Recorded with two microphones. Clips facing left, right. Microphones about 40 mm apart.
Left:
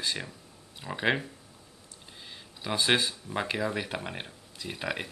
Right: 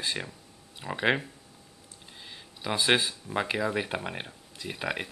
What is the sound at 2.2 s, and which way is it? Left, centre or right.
Speech, centre.